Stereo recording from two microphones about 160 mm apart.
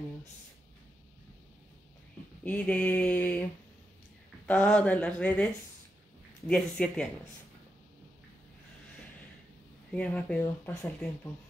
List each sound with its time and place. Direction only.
2.4 s speech: 10° left (ahead or behind)
4.5 s speech: 10° left (ahead or behind)
9.9 s speech: 10° left (ahead or behind)
10.4 s speech: 20° left (ahead or behind)